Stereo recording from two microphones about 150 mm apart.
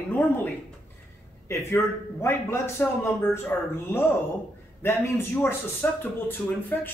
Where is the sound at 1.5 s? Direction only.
20° left (ahead or behind).